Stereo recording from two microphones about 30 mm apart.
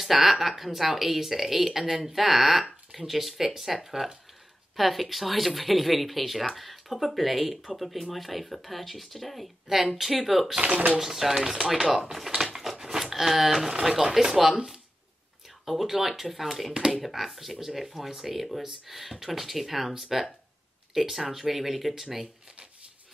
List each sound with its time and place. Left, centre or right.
0.0 s speech: centre
12.8 s a sound: centre
13.7 s speech: centre
15.6 s speech: centre